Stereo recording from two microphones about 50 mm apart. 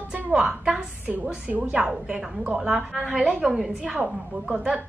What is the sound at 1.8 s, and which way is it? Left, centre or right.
A woman's voice, centre.